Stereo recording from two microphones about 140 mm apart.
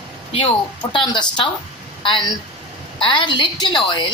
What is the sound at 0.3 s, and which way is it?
A woman's voice, 35° left (ahead or behind).